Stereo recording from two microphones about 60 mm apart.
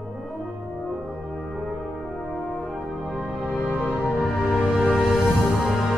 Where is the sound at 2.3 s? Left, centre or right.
Left.